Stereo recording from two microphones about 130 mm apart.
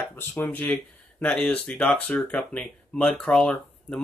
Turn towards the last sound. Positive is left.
turn(degrees=5)  # may be behind; listen again after turning